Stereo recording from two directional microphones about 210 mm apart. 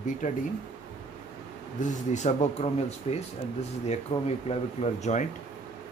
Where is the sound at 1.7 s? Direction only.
35° left (ahead or behind).